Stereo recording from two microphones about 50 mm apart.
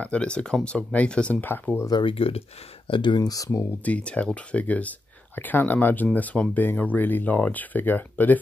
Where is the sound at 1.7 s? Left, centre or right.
Left.